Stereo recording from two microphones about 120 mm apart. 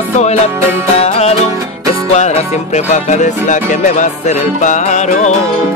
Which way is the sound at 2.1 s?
70° left (ahead or behind).